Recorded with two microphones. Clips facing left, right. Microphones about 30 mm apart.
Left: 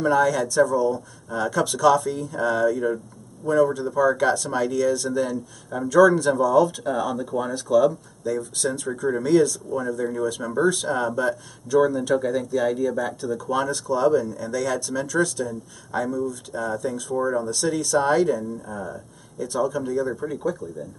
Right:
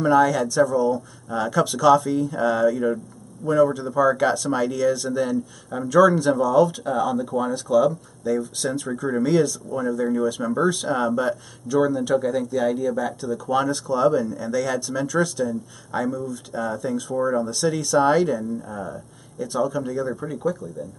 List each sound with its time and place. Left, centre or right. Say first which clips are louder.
0.0 s speech: right 2 dB; centre